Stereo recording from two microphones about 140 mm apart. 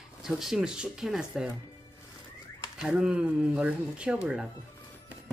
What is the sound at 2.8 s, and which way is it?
Speech, 5° right (ahead or behind).